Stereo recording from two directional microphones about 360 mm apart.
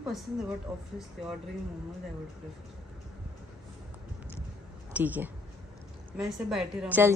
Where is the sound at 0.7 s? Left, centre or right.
Centre.